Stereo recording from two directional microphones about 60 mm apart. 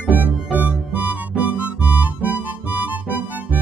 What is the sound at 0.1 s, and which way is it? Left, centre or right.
Music, right.